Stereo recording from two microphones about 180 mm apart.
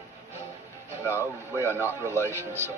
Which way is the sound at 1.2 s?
15° left (ahead or behind).